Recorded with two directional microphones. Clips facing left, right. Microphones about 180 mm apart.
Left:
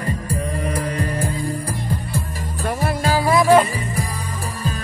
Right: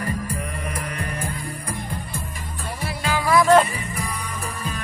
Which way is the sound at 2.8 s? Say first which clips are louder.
Left 5 dB; 50° left (ahead or behind).